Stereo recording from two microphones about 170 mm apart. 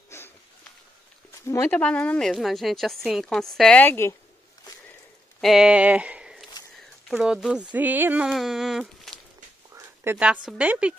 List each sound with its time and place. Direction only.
0.1 s a sound: 15° left (ahead or behind)
1.5 s speech: 10° left (ahead or behind)
5.4 s speech: centre (ahead or behind)
9.8 s speech: 10° right (ahead or behind)